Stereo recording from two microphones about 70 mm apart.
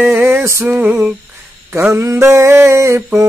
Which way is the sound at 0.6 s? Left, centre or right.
Right.